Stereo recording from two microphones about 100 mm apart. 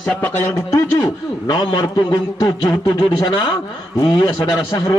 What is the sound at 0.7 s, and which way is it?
A man's voice, 40° left (ahead or behind).